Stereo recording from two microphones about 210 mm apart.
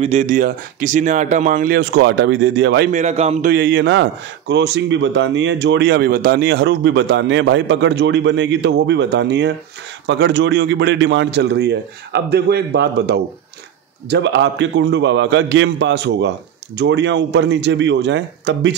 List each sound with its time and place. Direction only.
0.0 s speech: 30° right (ahead or behind); by 2.9 s 55° right (ahead or behind)
2.9 s speech: 35° right (ahead or behind)
3.5 s a man's voice: 55° right (ahead or behind)